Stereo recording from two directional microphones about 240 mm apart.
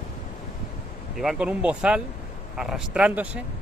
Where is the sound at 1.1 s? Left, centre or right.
Centre.